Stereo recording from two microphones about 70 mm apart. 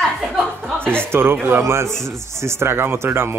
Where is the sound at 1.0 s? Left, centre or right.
Right.